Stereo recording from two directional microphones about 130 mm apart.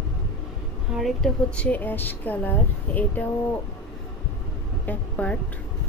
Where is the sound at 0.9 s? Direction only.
Centre (ahead or behind).